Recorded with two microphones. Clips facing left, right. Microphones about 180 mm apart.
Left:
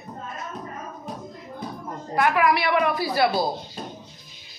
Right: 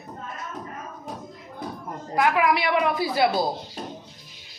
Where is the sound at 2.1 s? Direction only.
20° right (ahead or behind).